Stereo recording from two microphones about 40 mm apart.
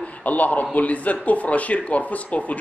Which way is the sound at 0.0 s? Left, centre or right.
Left.